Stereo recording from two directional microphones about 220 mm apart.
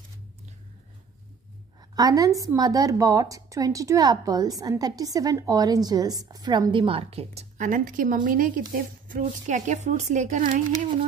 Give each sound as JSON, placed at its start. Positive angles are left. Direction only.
{"t": 2.0, "sound": "a woman's voice", "side_deg": -15}